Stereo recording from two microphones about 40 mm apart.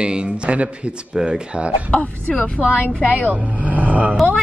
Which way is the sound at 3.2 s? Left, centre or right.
Right.